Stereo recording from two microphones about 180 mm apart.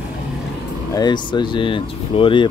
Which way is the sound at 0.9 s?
25° left (ahead or behind).